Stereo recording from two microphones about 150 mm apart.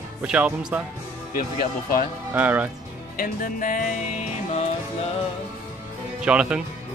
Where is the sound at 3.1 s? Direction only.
65° left (ahead or behind).